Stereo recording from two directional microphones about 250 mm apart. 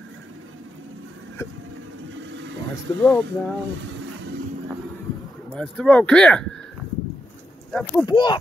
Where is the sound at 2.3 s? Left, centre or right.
Right.